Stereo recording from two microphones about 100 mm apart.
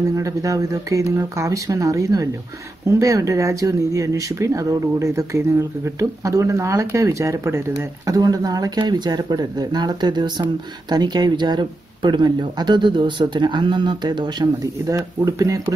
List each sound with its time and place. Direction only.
0.1 s speech: 35° right (ahead or behind)